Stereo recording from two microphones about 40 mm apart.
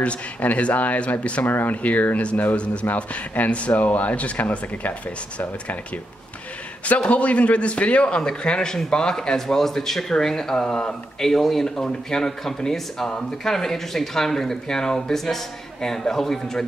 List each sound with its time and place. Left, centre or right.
0.0 s speech: left
1.4 s speech: left
1.8 s speech: left
2.5 s speech: left
7.1 s speech: left; by 16.6 s centre